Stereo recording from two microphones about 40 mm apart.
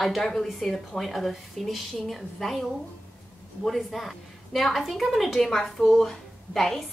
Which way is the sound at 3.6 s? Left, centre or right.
Centre.